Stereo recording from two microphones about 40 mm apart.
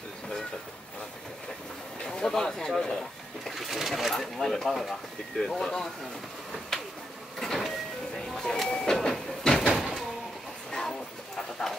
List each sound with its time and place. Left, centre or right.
2.0 s a sound: centre
2.7 s speech: centre
3.5 s speech: centre
4.1 s speech: centre
7.3 s printer: centre
8.3 s a sound: centre
8.6 s train: centre
9.5 s vehicle: centre
9.8 s vehicle: centre
10.7 s a sound: centre